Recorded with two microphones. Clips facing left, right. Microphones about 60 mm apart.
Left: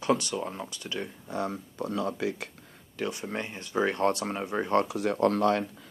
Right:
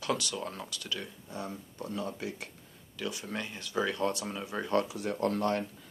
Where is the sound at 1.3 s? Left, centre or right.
Left.